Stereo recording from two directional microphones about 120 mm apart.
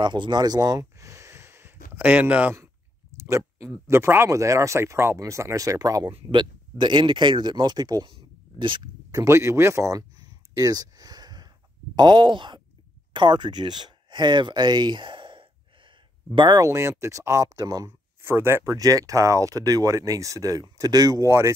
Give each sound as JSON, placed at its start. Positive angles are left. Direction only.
{"t": 0.0, "sound": "speech", "side_deg": -40}
{"t": 3.3, "sound": "speech", "side_deg": -25}
{"t": 9.2, "sound": "speech", "side_deg": -25}